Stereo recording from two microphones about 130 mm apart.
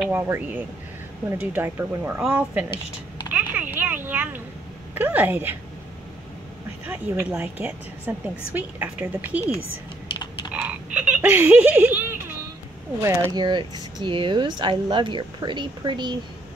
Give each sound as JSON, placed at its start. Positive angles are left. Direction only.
{"t": 0.1, "sound": "speech", "side_deg": -15}
{"t": 3.3, "sound": "a sound", "side_deg": -15}
{"t": 4.9, "sound": "speech", "side_deg": -15}
{"t": 6.9, "sound": "speech", "side_deg": -15}
{"t": 10.5, "sound": "frog", "side_deg": -10}
{"t": 13.0, "sound": "speech", "side_deg": -25}
{"t": 13.4, "sound": "speech", "side_deg": -35}